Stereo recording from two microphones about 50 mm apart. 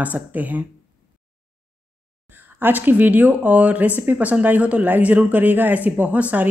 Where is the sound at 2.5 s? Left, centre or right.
Right.